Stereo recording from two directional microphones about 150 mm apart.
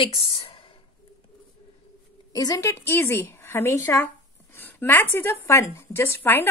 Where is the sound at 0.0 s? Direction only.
35° left (ahead or behind).